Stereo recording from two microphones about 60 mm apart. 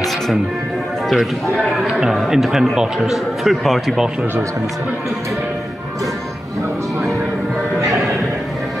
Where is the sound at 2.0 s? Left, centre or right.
Centre.